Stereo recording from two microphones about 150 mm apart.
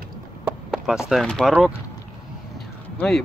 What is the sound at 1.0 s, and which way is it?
Speech, centre (ahead or behind).